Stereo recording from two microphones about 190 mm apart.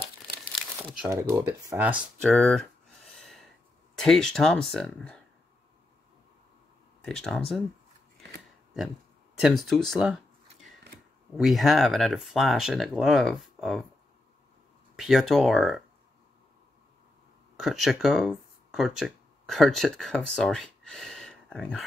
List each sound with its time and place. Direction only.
0.6 s crumpling: 5° left (ahead or behind)
1.0 s speech: 20° right (ahead or behind)
2.2 s speech: 5° left (ahead or behind)
3.2 s a sound: centre (ahead or behind)
3.9 s speech: centre (ahead or behind)
7.1 s speech: 5° left (ahead or behind)
8.7 s a sound: 5° right (ahead or behind)
11.3 s speech: centre (ahead or behind)
15.0 s speech: centre (ahead or behind)
17.6 s speech: centre (ahead or behind)